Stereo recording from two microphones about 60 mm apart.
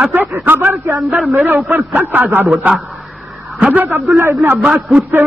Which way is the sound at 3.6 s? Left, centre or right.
Right.